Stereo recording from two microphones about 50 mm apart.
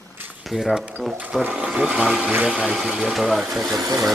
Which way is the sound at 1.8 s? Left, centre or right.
Centre.